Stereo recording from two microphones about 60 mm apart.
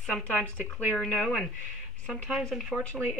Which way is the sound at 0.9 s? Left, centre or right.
Centre.